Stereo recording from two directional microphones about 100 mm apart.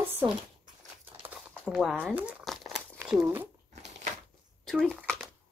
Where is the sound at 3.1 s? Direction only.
5° right (ahead or behind).